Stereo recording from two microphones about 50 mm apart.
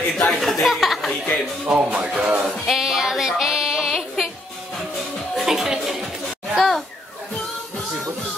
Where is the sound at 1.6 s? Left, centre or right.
Right.